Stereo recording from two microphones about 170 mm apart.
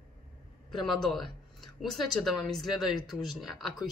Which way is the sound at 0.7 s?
Centre (ahead or behind).